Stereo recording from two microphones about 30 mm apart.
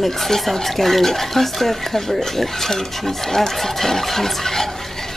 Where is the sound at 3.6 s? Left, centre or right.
Centre.